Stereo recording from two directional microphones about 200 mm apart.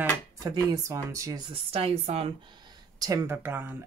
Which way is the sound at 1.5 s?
30° right (ahead or behind).